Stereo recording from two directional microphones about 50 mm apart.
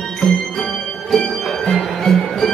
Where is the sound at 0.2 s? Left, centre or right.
Centre.